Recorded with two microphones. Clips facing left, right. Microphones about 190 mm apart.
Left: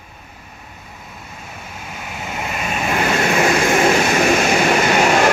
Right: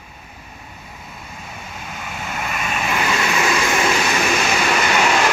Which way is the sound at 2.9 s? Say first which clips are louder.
Left 4 dB; 55° left (ahead or behind).